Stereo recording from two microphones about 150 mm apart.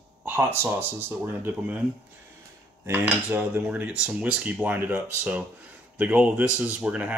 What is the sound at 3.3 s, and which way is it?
Speech, 10° right (ahead or behind).